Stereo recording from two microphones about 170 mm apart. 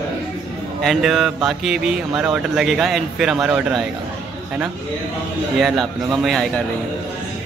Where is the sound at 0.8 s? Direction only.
5° right (ahead or behind).